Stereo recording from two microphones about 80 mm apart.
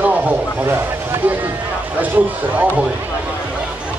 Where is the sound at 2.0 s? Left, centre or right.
Right.